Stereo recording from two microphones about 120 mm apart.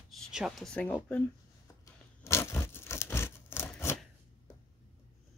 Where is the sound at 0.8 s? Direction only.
15° left (ahead or behind).